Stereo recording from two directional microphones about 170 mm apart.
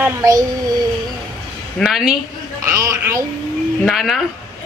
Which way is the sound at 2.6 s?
20° right (ahead or behind).